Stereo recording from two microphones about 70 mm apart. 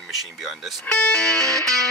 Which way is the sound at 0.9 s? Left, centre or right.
Centre.